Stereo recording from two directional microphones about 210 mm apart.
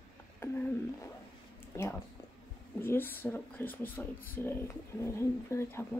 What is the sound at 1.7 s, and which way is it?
Speech, 15° left (ahead or behind).